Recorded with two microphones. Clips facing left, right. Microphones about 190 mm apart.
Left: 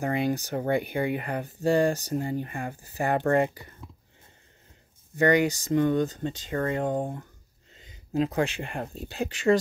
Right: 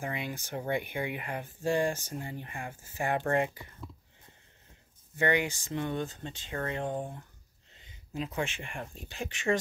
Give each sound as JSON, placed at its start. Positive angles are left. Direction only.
{"t": 0.0, "sound": "speech", "side_deg": 40}
{"t": 5.1, "sound": "speech", "side_deg": 40}
{"t": 8.3, "sound": "speech", "side_deg": 35}